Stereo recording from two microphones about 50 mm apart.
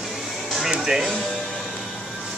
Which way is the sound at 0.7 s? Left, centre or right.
Centre.